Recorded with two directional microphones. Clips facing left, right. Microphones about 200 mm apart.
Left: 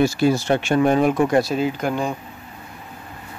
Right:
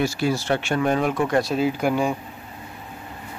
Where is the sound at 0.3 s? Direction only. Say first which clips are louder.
Left 4 dB; 15° left (ahead or behind).